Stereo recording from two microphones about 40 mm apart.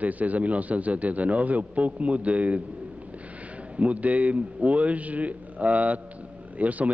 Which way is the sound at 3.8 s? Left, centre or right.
Right.